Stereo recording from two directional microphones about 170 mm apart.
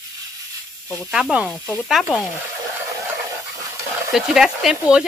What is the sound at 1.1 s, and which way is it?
Speech, 5° right (ahead or behind).